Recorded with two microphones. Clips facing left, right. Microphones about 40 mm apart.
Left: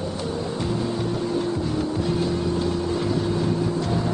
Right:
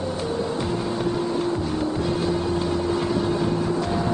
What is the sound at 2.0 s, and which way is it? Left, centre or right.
Vehicle, centre.